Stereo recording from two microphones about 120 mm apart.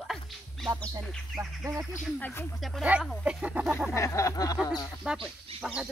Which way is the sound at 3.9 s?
25° left (ahead or behind).